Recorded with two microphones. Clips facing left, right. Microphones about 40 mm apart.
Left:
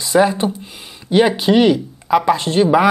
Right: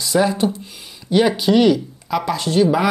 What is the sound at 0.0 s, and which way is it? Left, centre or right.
Speech, left.